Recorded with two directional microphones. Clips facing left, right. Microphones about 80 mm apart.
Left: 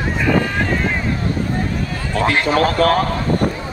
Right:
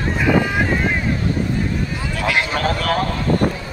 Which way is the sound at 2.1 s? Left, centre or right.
Left.